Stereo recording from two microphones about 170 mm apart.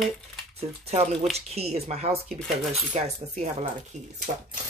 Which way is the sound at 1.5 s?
40° right (ahead or behind).